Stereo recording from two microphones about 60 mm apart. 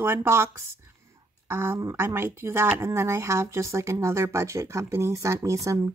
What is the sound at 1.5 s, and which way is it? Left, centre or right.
Speech, right.